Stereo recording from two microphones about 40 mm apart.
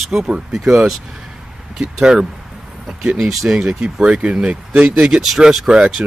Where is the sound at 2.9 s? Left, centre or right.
Centre.